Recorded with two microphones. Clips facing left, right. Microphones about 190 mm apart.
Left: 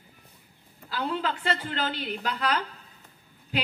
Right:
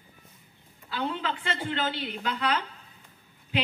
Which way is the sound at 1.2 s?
40° left (ahead or behind).